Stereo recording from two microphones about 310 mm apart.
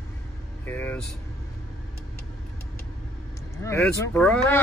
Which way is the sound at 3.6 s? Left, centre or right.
Centre.